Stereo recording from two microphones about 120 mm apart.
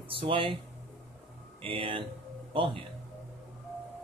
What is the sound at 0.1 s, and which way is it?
Speech, 50° right (ahead or behind).